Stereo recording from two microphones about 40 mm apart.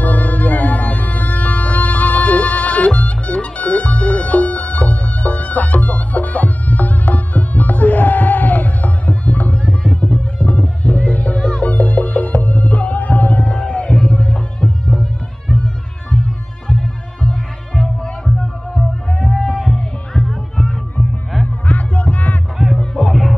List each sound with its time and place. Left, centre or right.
0.0 s music: left
13.5 s music: left
15.4 s music: left
19.0 s music: centre
21.6 s music: left
22.9 s music: centre